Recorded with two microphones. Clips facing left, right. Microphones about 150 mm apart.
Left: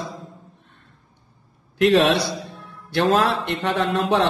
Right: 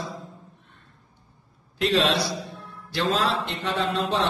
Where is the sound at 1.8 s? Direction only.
60° left (ahead or behind).